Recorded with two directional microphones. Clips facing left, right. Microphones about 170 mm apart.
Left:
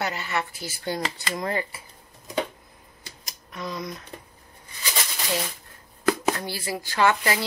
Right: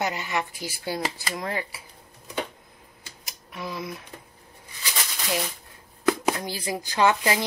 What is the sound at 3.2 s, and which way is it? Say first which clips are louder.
Speech: left 1 dB; 10° right (ahead or behind).